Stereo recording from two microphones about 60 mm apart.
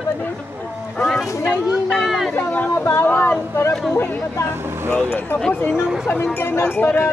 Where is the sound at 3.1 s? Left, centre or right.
Left.